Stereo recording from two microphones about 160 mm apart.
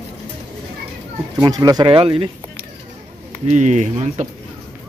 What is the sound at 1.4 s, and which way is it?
Speech, 25° right (ahead or behind).